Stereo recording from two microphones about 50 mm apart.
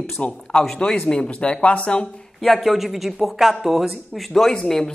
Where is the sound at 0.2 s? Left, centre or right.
Left.